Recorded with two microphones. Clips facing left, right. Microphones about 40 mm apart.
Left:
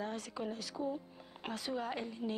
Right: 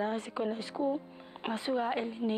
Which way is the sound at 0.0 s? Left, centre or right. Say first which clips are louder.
Right 7 dB; right.